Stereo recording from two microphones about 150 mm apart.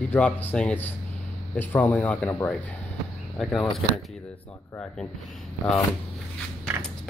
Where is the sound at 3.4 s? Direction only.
Centre (ahead or behind).